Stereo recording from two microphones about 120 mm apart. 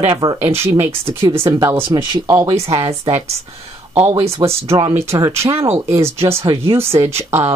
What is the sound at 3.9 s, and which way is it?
Speech, 55° right (ahead or behind).